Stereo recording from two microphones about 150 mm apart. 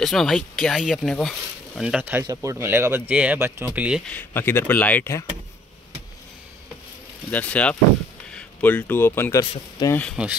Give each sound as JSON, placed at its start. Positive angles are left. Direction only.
{"t": 0.0, "sound": "speech", "side_deg": 0}
{"t": 4.1, "sound": "speech", "side_deg": 15}
{"t": 7.2, "sound": "speech", "side_deg": 10}
{"t": 9.4, "sound": "speech", "side_deg": 25}
{"t": 10.2, "sound": "speech", "side_deg": -5}